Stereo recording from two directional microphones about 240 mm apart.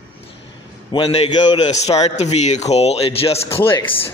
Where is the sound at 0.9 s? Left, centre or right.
Left.